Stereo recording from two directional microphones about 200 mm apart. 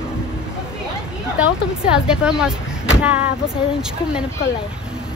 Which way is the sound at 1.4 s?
5° right (ahead or behind).